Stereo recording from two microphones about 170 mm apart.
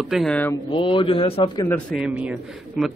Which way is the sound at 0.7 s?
30° left (ahead or behind).